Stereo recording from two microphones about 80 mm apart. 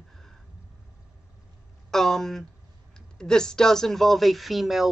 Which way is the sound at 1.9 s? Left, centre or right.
Centre.